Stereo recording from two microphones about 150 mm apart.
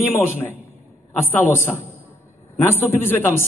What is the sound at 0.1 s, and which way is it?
A man's voice, 15° left (ahead or behind).